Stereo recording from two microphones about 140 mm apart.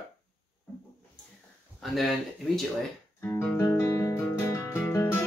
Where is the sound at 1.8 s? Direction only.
Centre (ahead or behind).